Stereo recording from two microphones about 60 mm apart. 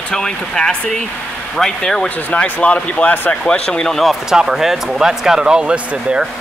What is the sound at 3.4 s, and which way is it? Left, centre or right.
Speech, centre.